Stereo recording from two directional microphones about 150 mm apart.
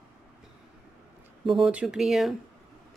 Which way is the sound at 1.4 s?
Centre (ahead or behind).